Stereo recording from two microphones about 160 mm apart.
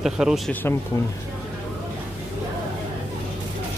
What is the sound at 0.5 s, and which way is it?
Speech, 10° left (ahead or behind).